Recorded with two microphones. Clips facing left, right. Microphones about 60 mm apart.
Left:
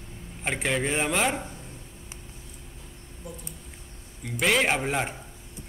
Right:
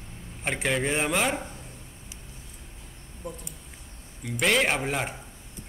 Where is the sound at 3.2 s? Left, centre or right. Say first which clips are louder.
Right 3 dB; right.